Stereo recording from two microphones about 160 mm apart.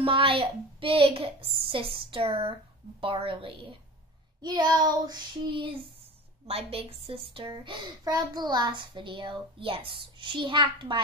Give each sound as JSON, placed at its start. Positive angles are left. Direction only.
{"t": 0.0, "sound": "a child's voice", "side_deg": -35}
{"t": 4.4, "sound": "child singing", "side_deg": -25}
{"t": 6.4, "sound": "a child's voice", "side_deg": -40}